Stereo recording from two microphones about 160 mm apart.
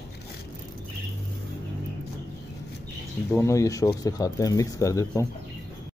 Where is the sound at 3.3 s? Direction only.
20° left (ahead or behind).